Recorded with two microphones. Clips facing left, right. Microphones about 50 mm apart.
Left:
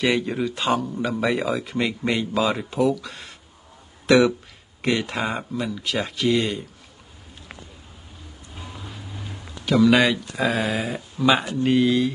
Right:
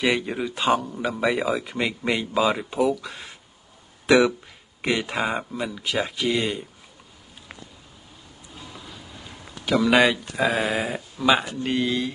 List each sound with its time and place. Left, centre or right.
0.0 s speech: centre
4.0 s a sound: centre
4.8 s speech: centre
9.7 s speech: centre
11.1 s speech: centre